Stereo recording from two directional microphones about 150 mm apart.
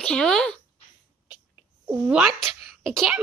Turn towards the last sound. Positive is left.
turn(degrees=0)  # may be behind; listen again after turning